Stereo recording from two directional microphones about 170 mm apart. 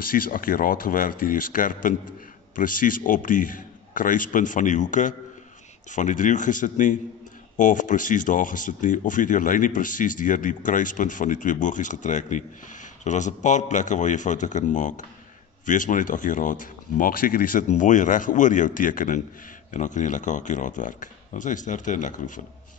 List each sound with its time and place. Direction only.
0.0 s speech: 55° left (ahead or behind)